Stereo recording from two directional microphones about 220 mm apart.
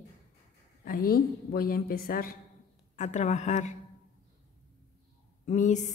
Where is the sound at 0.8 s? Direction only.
40° left (ahead or behind).